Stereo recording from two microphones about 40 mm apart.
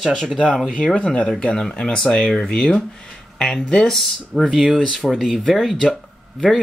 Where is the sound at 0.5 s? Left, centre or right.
Centre.